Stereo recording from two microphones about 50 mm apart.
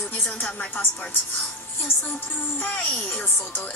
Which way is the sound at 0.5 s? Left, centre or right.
Left.